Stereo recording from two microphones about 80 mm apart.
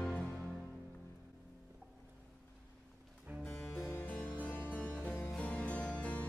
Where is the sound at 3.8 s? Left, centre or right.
Left.